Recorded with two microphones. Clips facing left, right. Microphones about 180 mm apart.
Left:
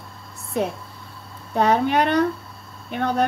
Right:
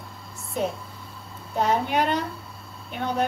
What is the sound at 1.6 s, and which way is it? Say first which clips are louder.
A woman's voice: left 4 dB; 65° left (ahead or behind).